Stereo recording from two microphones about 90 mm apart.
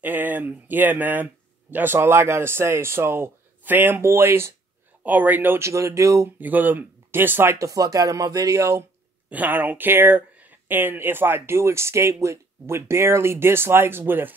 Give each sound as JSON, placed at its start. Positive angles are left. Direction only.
{"t": 0.0, "sound": "speech", "side_deg": -20}
{"t": 5.0, "sound": "speech", "side_deg": -20}
{"t": 5.7, "sound": "speech", "side_deg": -35}
{"t": 6.4, "sound": "speech", "side_deg": -20}
{"t": 7.5, "sound": "speech", "side_deg": -40}
{"t": 9.3, "sound": "speech", "side_deg": -20}